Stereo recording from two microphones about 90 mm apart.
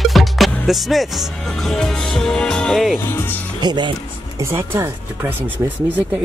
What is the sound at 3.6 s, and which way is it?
Speech, 55° right (ahead or behind).